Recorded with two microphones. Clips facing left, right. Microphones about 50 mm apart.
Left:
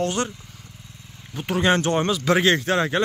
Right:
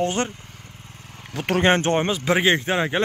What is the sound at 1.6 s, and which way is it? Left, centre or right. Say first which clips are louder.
A man's voice: right 1 dB; right.